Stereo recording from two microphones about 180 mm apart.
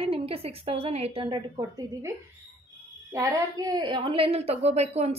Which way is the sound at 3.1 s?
20° right (ahead or behind).